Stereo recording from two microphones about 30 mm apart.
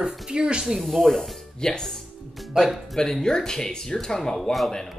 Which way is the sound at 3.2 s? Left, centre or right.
Left.